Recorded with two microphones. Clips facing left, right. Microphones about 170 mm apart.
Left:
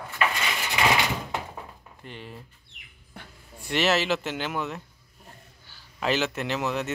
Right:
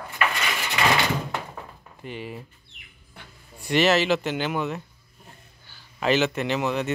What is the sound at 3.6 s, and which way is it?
Speech, centre (ahead or behind).